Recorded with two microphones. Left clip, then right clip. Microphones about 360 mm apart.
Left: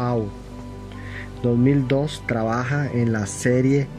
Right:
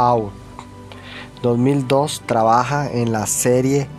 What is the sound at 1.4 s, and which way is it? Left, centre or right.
Speech, right.